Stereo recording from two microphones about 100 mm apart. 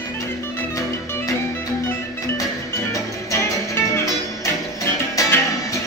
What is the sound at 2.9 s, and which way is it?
Music, 30° left (ahead or behind).